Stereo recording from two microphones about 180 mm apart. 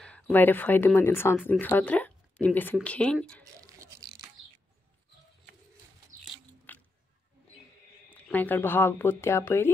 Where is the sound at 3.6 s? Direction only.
20° right (ahead or behind).